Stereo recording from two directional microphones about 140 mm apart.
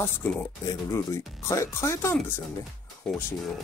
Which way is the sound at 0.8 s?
20° left (ahead or behind).